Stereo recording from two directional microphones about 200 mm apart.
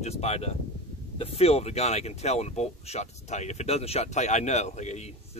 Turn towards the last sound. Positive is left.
turn(degrees=35)  # may be behind; listen again after turning